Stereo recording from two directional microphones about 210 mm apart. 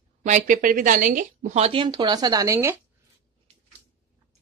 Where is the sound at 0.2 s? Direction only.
40° right (ahead or behind); by 2.7 s 15° right (ahead or behind).